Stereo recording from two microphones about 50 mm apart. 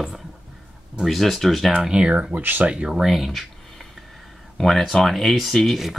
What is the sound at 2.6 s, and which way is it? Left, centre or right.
Speech, right.